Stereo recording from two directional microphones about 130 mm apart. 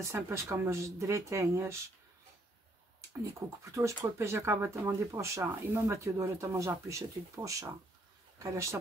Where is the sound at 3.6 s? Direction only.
25° right (ahead or behind).